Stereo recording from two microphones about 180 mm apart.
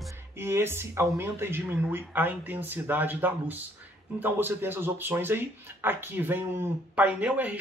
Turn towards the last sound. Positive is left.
turn(degrees=-10)  # may be behind; listen again after turning